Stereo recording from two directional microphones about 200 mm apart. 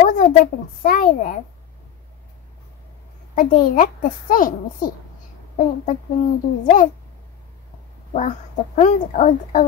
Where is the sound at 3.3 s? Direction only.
45° left (ahead or behind).